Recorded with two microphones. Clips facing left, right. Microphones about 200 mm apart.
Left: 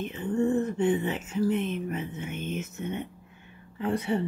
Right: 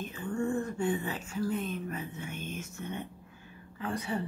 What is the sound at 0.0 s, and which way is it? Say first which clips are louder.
Speech: left 6 dB; 20° left (ahead or behind).